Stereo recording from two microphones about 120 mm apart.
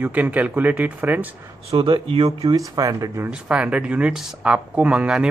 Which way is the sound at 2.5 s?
30° right (ahead or behind).